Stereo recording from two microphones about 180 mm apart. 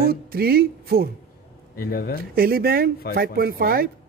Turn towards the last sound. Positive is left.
turn(degrees=-55)  # may be behind; listen again after turning